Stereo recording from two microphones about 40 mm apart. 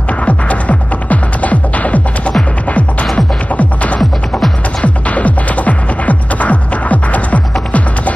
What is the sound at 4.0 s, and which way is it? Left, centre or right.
Music, centre.